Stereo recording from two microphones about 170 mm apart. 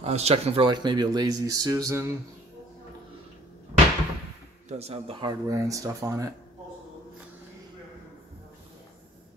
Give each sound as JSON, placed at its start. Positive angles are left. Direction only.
{"t": 0.0, "sound": "speech", "side_deg": -35}
{"t": 3.7, "sound": "fireworks", "side_deg": -45}
{"t": 4.6, "sound": "speech", "side_deg": -40}
{"t": 5.5, "sound": "speech", "side_deg": -20}